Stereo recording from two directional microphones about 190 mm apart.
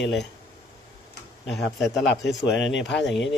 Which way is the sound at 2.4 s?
65° left (ahead or behind).